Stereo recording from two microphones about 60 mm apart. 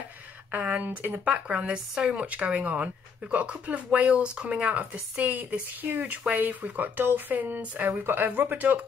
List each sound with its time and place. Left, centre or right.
0.6 s speech: right